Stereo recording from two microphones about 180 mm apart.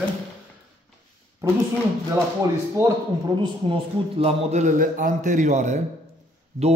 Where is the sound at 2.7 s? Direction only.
20° right (ahead or behind).